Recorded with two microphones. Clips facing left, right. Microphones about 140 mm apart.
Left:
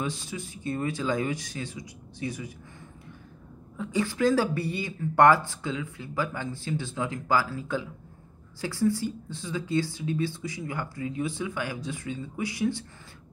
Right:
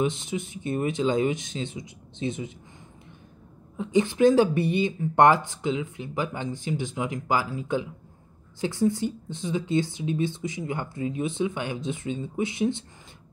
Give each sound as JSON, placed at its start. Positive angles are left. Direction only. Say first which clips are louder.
{"t": 0.0, "sound": "speech", "louder": "right 6 dB", "side_deg": -20}
{"t": 3.7, "sound": "speech", "louder": "right 5 dB", "side_deg": -20}